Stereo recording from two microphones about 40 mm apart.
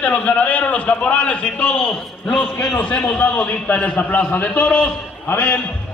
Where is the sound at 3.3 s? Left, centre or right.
Left.